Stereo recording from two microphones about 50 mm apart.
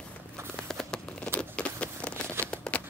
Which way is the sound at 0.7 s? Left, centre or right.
Centre.